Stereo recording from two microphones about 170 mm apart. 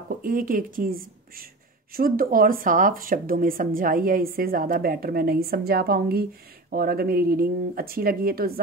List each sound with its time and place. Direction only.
0.1 s speech: 55° right (ahead or behind)